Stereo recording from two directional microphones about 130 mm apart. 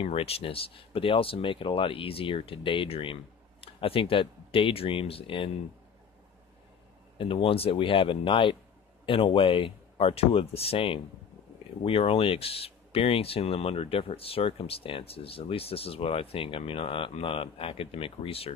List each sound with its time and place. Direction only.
0.0 s speech: 50° left (ahead or behind)
7.2 s speech: 45° left (ahead or behind)